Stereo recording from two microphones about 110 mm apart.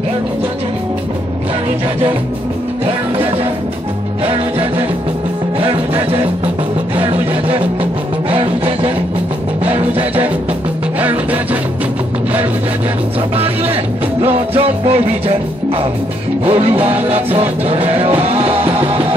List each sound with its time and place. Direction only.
7.0 s music: 55° right (ahead or behind)
14.2 s music: 60° right (ahead or behind)
16.4 s music: 65° right (ahead or behind)